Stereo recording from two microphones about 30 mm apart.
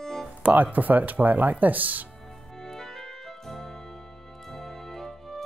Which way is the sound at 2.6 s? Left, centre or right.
Centre.